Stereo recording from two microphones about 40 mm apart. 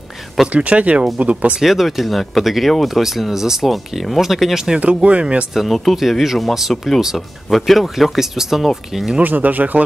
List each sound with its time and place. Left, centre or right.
0.5 s speech: right
1.6 s speech: centre
4.7 s speech: right
5.5 s speech: centre
6.7 s speech: centre
9.2 s speech: right